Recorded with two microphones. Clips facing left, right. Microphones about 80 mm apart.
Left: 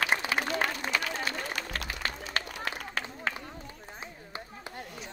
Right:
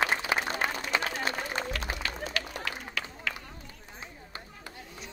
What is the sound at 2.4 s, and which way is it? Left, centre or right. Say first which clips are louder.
Run: left 4 dB; left.